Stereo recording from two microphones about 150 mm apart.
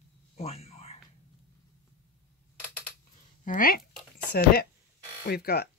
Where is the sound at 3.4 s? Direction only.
65° left (ahead or behind).